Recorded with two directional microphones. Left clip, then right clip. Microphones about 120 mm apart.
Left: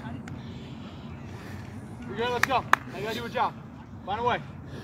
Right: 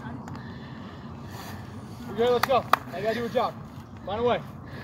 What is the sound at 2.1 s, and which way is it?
Speech, 45° left (ahead or behind).